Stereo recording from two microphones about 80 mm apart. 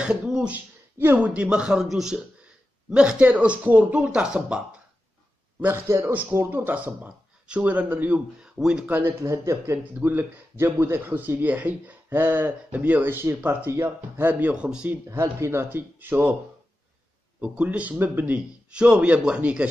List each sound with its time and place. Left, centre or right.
0.0 s speech: centre
0.5 s a man's voice: right
5.6 s speech: right; by 8.9 s centre
9.2 s speech: right
9.9 s speech: right
15.0 s speech: right
15.6 s speech: right
17.4 s a man's voice: centre